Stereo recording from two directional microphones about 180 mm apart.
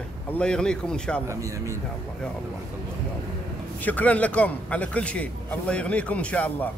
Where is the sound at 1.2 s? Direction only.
15° right (ahead or behind).